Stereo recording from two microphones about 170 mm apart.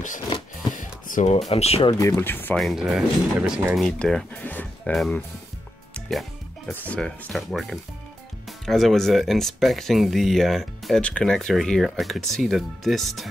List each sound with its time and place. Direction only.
0.7 s a sound: 50° left (ahead or behind)
1.5 s speech: 35° left (ahead or behind)
2.0 s speech: 15° left (ahead or behind)
2.6 s speech: centre (ahead or behind)
5.9 s music: centre (ahead or behind)
6.7 s speech: 10° left (ahead or behind)